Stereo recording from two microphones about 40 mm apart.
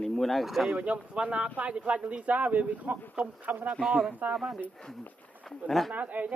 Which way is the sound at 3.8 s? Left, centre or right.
Centre.